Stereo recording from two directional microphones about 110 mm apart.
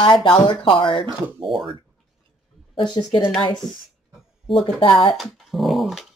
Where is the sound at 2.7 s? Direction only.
45° left (ahead or behind).